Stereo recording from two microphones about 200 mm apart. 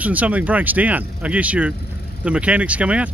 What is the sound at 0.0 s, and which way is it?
Speech, 10° right (ahead or behind).